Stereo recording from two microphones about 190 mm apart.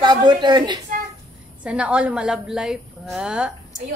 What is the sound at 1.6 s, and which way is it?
A woman's voice, 5° right (ahead or behind).